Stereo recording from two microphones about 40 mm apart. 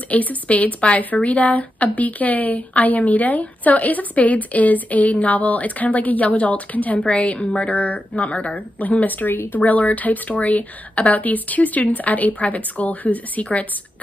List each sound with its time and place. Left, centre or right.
0.1 s speech: left
9.6 s speech: left